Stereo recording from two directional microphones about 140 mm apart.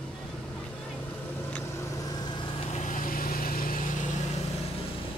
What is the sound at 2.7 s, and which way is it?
Vehicle, 65° left (ahead or behind).